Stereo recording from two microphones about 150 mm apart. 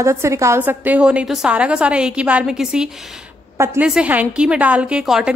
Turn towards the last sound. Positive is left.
turn(degrees=-5)  # may be behind; listen again after turning